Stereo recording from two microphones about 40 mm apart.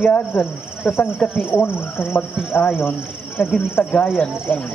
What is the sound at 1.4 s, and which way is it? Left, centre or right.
Speech, left.